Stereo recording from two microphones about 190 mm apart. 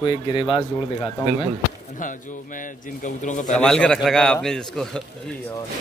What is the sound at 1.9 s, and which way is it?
A man's voice, 45° left (ahead or behind).